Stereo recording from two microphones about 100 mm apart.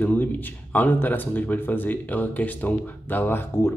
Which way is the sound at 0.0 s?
20° left (ahead or behind).